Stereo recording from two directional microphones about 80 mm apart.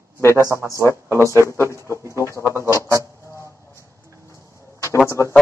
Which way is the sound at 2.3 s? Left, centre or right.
Left.